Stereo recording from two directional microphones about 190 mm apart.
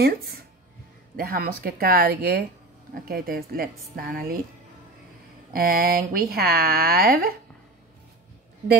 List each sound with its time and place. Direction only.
0.0 s speech: 55° right (ahead or behind)
5.5 s speech: 50° right (ahead or behind)